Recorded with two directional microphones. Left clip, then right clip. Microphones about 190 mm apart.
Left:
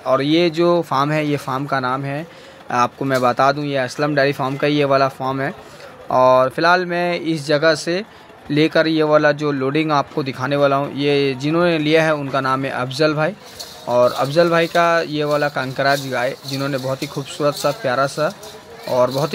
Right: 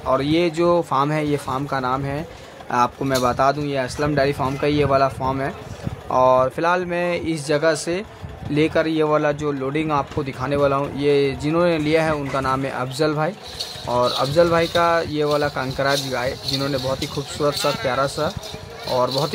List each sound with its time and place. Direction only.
0.0 s speech: 10° left (ahead or behind)